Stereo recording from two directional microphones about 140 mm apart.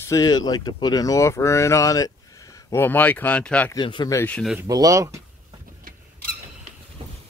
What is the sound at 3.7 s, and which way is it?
Speech, 35° left (ahead or behind).